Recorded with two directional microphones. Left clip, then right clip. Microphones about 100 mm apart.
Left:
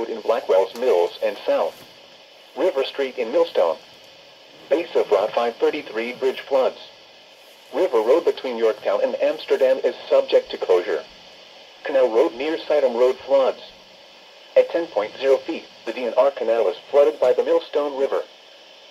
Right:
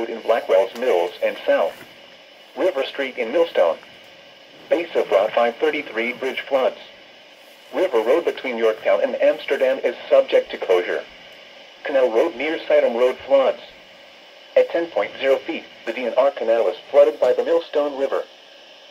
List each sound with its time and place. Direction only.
0.0 s speech: 30° left (ahead or behind)
8.1 s speech: 40° left (ahead or behind)